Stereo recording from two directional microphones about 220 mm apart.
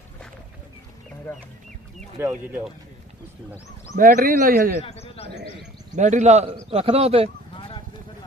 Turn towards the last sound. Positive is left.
turn(degrees=-25)  # may be behind; listen again after turning